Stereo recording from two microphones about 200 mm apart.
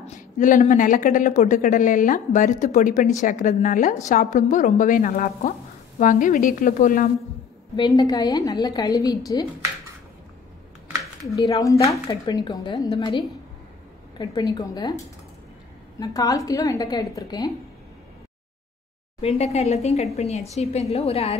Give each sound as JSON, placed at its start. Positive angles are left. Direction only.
{"t": 0.0, "sound": "speech", "side_deg": 40}
{"t": 7.7, "sound": "a woman's voice", "side_deg": 20}
{"t": 11.2, "sound": "speech", "side_deg": 15}
{"t": 14.1, "sound": "a woman's voice", "side_deg": 20}
{"t": 16.0, "sound": "speech", "side_deg": 15}
{"t": 19.2, "sound": "speech", "side_deg": 30}